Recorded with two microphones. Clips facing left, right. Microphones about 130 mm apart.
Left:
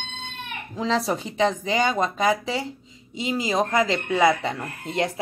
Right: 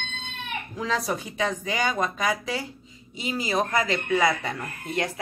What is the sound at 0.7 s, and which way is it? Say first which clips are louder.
Speech: left 4 dB; 25° left (ahead or behind).